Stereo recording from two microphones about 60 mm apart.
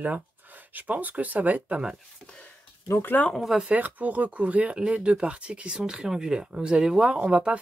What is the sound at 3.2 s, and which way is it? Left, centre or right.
Speech, left.